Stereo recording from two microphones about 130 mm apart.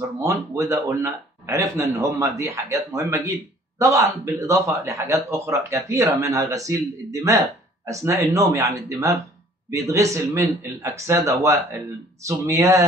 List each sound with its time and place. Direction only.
0.2 s a man's voice: 25° right (ahead or behind)